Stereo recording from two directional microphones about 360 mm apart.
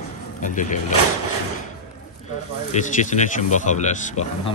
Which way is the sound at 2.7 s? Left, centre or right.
Centre.